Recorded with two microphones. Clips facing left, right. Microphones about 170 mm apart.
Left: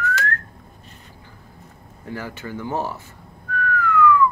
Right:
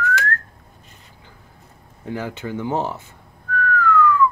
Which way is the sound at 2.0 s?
20° right (ahead or behind).